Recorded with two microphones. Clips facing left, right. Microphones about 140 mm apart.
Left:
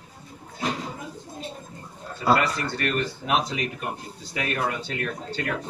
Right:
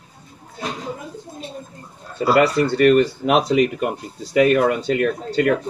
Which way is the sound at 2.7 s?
70° right (ahead or behind).